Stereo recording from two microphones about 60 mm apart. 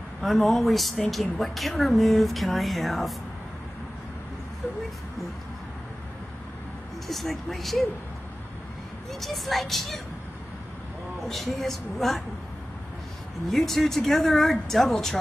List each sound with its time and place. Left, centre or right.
0.2 s speech: centre
7.1 s speech: centre
9.2 s speech: centre
11.2 s speech: centre
13.5 s speech: centre